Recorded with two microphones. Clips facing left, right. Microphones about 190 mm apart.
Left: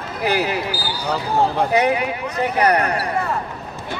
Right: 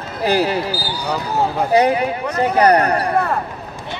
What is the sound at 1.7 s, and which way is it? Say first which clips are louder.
Speech: right 3 dB; 35° right (ahead or behind).